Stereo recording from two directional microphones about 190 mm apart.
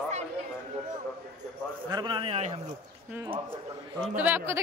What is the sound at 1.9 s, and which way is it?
Speech, 25° right (ahead or behind).